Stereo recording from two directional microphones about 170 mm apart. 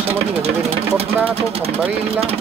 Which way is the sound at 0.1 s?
35° right (ahead or behind).